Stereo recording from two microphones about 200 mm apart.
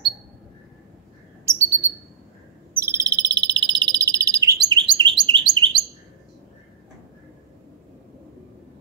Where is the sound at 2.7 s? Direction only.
15° right (ahead or behind).